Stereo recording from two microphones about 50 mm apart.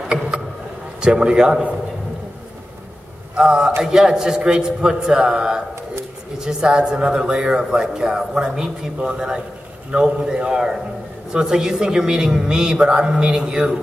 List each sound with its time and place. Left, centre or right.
0.1 s a sound: centre
1.0 s a man's voice: centre
3.3 s a man's voice: centre